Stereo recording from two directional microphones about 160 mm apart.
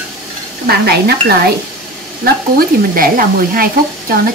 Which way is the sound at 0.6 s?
80° right.